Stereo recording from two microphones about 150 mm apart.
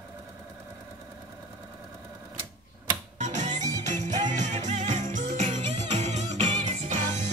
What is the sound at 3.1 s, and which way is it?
Music, 50° right (ahead or behind).